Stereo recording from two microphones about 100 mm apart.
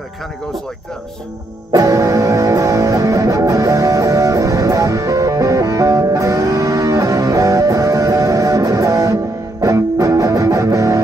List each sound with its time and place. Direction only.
1.7 s music: 40° right (ahead or behind)